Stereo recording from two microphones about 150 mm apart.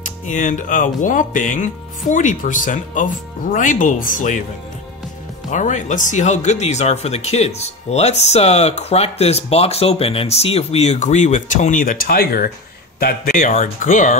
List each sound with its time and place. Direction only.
0.0 s speech: 55° left (ahead or behind)
5.5 s speech: 55° left (ahead or behind); by 12.4 s 85° left
13.0 s speech: 70° left (ahead or behind)